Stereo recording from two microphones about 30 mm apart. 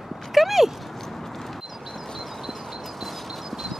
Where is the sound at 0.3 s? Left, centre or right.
Centre.